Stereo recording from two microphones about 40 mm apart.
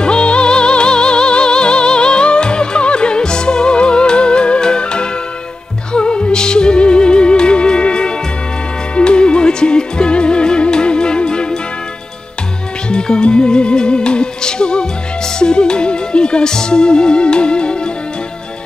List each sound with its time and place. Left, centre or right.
0.0 s music: left
12.9 s music: left